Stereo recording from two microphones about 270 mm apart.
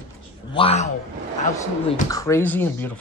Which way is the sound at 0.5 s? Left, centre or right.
Centre.